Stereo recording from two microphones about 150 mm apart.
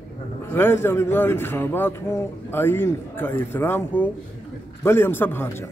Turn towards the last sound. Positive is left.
turn(degrees=15)  # may be behind; listen again after turning